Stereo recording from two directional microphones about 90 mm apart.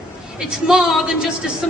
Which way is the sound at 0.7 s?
5° right (ahead or behind).